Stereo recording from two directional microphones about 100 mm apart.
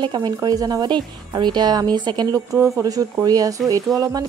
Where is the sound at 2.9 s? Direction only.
40° right (ahead or behind).